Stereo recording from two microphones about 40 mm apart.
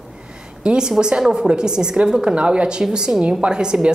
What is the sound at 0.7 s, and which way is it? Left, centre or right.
A woman's voice, centre.